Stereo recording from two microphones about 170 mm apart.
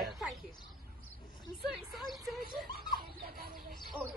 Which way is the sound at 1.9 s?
Centre (ahead or behind).